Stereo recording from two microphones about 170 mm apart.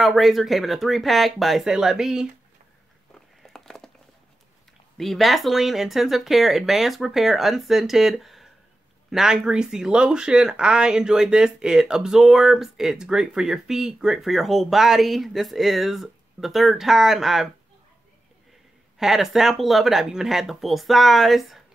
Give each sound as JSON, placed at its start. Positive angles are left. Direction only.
{"t": 0.0, "sound": "speech", "side_deg": 0}
{"t": 3.4, "sound": "a sound", "side_deg": 0}
{"t": 4.9, "sound": "speech", "side_deg": 0}
{"t": 18.9, "sound": "speech", "side_deg": 0}